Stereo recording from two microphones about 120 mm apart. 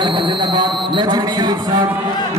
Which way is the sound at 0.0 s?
40° right (ahead or behind).